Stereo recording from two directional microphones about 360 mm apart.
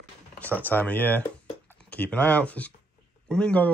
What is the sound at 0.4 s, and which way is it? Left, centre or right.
Speech, centre.